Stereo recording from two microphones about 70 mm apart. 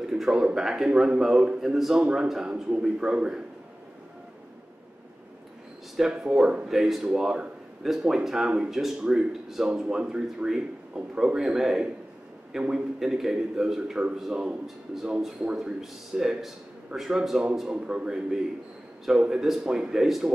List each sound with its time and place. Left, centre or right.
0.0 s a sound: centre
0.6 s speech: centre
5.9 s a man's voice: centre